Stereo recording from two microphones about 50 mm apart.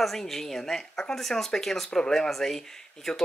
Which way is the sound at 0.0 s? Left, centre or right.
Centre.